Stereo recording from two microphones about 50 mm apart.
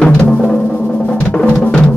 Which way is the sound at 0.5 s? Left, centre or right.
Left.